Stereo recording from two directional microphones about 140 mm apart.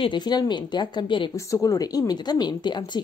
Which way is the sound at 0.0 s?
35° left (ahead or behind).